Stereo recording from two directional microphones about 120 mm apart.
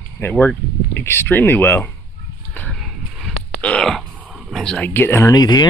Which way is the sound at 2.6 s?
5° left (ahead or behind).